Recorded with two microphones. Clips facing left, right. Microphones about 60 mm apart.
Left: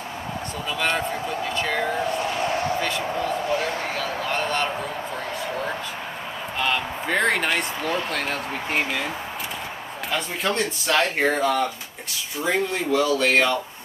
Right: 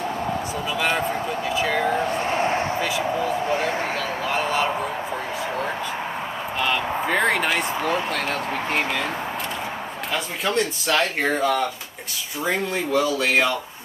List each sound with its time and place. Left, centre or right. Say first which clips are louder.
0.7 s speech: right 1 dB; centre
2.2 s a sound: right 2 dB; right
2.8 s speech: right 2 dB; centre
6.6 s speech: right 2 dB; centre
10.1 s speech: right 1 dB; centre